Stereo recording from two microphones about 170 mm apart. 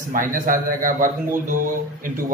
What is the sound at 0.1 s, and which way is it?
Speech, 55° right (ahead or behind).